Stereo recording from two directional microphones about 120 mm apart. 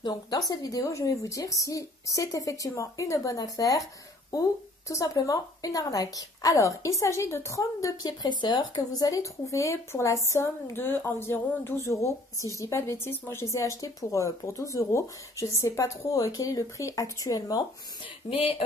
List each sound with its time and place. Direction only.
0.5 s a woman's voice: 30° left (ahead or behind)
18.3 s speech: 50° left (ahead or behind)